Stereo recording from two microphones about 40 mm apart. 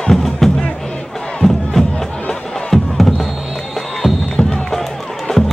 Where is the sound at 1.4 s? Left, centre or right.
Centre.